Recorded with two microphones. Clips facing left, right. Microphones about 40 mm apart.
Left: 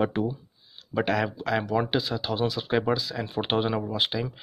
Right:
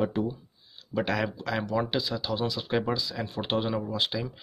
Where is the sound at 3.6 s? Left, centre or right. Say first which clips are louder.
Left 2 dB; centre.